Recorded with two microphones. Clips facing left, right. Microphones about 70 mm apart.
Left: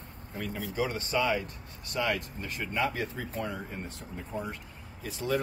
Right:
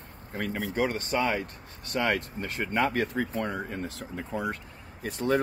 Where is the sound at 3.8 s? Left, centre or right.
Right.